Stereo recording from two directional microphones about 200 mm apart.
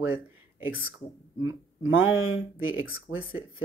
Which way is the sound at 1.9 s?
85° left.